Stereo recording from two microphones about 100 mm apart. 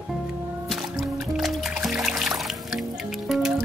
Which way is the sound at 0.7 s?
Centre (ahead or behind).